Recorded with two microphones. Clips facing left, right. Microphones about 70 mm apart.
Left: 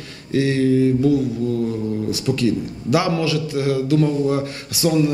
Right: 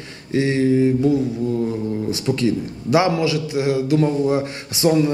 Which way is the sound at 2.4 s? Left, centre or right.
Right.